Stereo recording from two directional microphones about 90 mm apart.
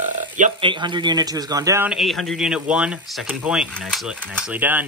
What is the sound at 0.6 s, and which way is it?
A man's voice, 60° right (ahead or behind).